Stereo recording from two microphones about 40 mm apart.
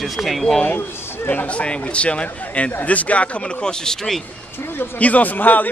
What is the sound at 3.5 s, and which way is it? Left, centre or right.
Speech, centre.